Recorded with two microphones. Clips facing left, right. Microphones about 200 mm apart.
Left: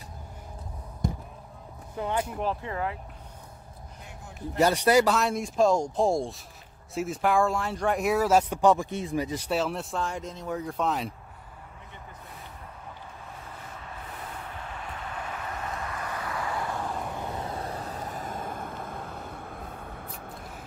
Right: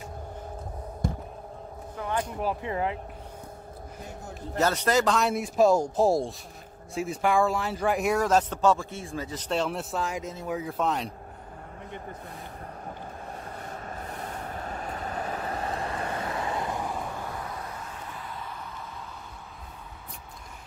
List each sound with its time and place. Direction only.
2.4 s speech: 20° right (ahead or behind)
4.6 s speech: 10° left (ahead or behind)
13.7 s vehicle: 45° right (ahead or behind); by 17.0 s 15° right (ahead or behind)
17.1 s vehicle: 20° left (ahead or behind); by 19.2 s 55° left (ahead or behind)